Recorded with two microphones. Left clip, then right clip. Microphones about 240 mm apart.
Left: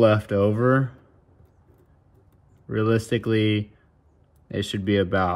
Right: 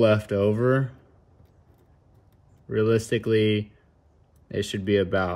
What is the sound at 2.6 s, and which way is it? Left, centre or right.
Speech, centre.